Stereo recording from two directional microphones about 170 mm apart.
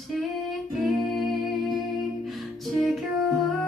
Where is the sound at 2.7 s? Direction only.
Centre (ahead or behind).